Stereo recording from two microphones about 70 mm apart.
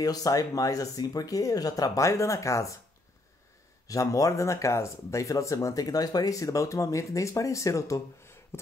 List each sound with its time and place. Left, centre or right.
0.0 s speech: left
3.8 s speech: left